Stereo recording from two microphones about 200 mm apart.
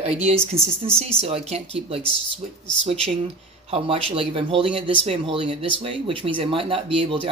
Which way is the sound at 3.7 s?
30° right (ahead or behind).